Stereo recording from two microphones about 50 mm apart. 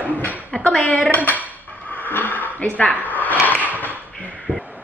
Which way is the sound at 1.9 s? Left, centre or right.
Left.